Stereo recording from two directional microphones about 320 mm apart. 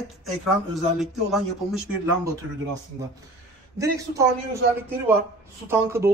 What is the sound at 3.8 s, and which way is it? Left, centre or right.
Speech, centre.